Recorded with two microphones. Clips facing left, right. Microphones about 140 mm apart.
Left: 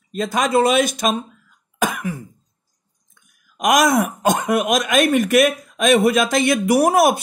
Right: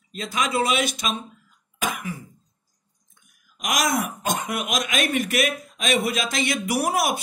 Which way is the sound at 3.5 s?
50° left (ahead or behind).